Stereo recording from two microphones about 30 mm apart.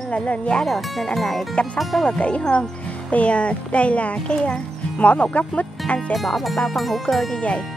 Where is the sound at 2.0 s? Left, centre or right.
Left.